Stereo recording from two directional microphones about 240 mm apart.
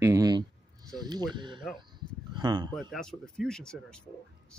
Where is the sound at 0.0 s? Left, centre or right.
Centre.